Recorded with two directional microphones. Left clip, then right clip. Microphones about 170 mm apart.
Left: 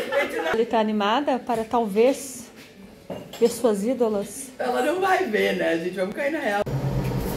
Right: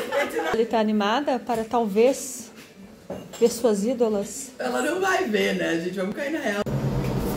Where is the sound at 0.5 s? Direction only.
5° left (ahead or behind).